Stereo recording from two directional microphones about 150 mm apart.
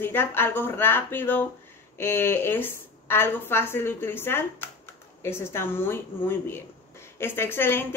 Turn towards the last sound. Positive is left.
turn(degrees=15)  # may be behind; listen again after turning